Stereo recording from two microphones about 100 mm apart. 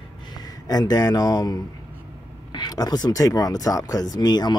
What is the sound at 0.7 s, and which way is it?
Speech, 40° left (ahead or behind).